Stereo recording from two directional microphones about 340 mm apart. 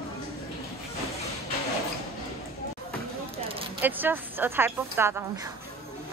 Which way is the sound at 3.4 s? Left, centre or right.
Centre.